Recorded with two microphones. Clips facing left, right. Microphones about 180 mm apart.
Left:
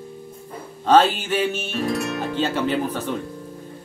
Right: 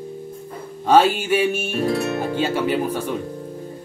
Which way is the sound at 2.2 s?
10° right (ahead or behind).